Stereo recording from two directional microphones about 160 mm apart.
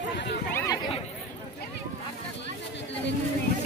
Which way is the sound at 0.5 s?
20° left (ahead or behind).